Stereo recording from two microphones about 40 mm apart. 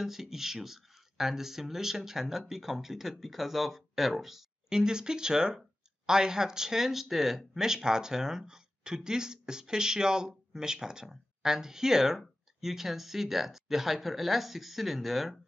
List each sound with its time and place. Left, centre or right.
0.0 s speech: centre
4.6 s speech: centre